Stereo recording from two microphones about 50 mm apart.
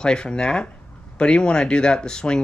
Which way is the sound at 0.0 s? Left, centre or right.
Centre.